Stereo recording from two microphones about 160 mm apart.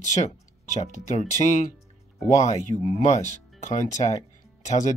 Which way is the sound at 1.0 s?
45° left (ahead or behind).